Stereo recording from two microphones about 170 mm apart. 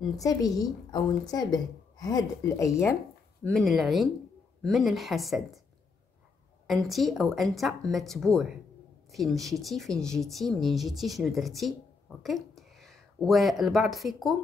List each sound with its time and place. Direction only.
0.1 s a woman's voice: 20° left (ahead or behind)
3.4 s speech: centre (ahead or behind)
6.7 s speech: centre (ahead or behind)